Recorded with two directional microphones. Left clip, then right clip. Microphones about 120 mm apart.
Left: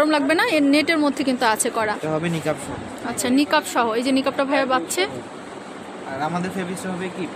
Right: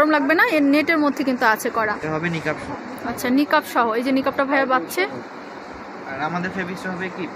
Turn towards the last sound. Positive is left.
turn(degrees=30)  # may be behind; listen again after turning